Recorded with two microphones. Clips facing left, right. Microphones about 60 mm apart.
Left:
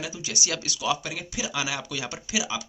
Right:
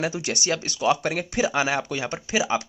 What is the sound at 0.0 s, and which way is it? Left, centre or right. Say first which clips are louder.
Speech: right 6 dB; right.